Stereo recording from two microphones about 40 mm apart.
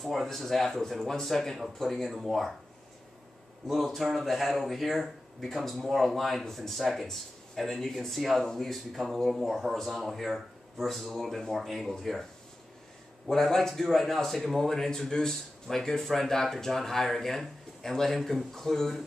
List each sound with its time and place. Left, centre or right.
0.0 s speech: centre
3.6 s speech: centre
13.3 s speech: centre